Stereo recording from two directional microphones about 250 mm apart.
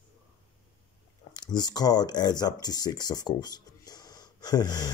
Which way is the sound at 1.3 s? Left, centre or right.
Centre.